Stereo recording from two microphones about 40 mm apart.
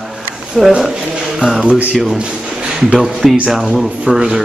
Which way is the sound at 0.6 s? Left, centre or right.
Centre.